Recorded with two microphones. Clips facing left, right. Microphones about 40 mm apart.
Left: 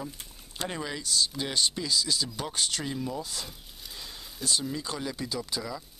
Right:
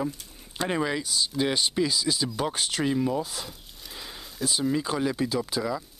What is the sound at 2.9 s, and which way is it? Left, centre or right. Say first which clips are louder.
Speech: right 8 dB; right.